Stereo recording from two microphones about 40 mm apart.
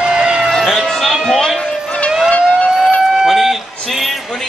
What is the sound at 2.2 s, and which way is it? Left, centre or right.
Siren, left.